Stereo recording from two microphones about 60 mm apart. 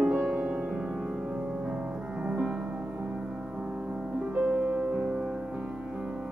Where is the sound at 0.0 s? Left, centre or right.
Centre.